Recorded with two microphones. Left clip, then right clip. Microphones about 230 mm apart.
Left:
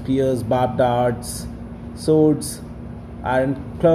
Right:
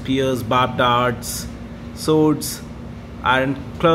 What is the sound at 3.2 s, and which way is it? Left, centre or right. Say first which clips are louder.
Speech: right 2 dB; centre.